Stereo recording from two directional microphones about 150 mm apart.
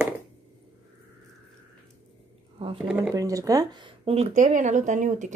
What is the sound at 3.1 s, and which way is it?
Speech, 25° right (ahead or behind).